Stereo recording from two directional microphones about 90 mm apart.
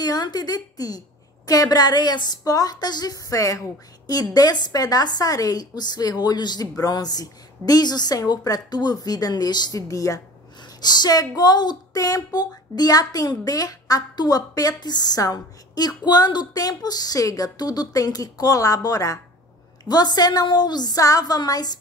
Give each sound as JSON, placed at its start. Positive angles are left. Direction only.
{"t": 0.0, "sound": "speech", "side_deg": 50}
{"t": 10.8, "sound": "speech", "side_deg": 50}